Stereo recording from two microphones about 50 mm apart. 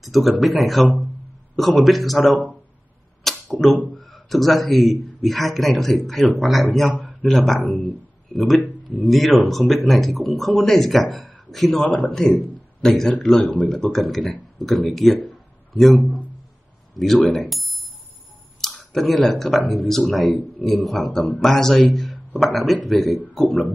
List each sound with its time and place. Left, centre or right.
0.0 s speech: centre
3.3 s arrow: centre
3.9 s speech: centre
11.8 s speech: left
12.8 s a man's voice: centre
13.4 s speech: left
13.9 s a man's voice: centre
21.9 s a sound: centre
22.4 s speech: centre